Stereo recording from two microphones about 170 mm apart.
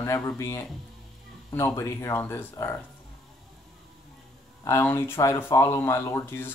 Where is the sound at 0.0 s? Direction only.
15° left (ahead or behind).